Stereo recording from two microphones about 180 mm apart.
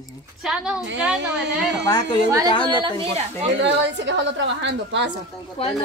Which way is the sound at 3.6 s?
80° right.